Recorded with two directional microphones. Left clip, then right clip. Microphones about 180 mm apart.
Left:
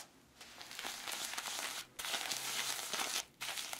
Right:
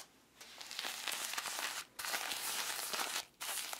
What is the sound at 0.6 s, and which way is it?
Crumpling, 30° right (ahead or behind).